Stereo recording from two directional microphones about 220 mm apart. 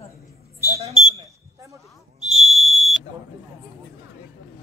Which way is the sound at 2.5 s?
30° left (ahead or behind).